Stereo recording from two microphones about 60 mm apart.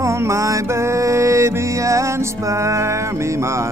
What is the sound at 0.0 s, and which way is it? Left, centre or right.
Music, right.